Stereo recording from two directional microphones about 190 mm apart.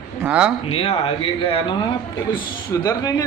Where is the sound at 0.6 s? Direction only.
30° left (ahead or behind).